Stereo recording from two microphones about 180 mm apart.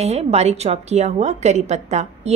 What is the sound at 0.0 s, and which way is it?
A woman's voice, 35° right (ahead or behind).